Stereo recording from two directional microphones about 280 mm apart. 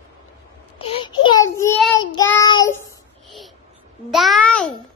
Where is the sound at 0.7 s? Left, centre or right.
Centre.